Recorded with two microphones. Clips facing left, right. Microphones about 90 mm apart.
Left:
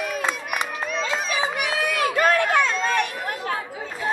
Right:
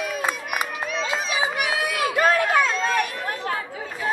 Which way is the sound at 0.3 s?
10° right (ahead or behind).